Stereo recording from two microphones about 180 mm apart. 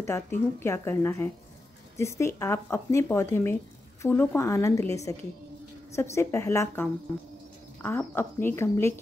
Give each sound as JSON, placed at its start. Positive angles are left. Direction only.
{"t": 0.0, "sound": "speech", "side_deg": 15}